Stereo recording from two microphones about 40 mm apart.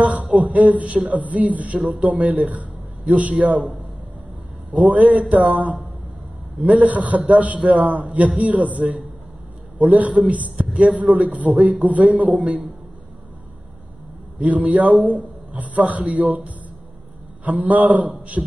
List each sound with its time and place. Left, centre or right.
0.0 s beatboxing: right
0.4 s a man's voice: right
14.4 s a man's voice: right